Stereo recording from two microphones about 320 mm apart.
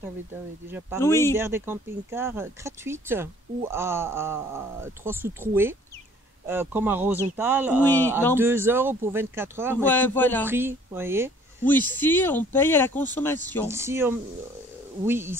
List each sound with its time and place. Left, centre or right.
0.7 s speech: centre
0.9 s speech: centre
1.3 s a man's voice: centre
7.8 s speech: centre
8.4 s speech: centre
9.8 s a man's voice: centre
10.4 s speech: centre
11.9 s speech: centre
13.7 s speech: centre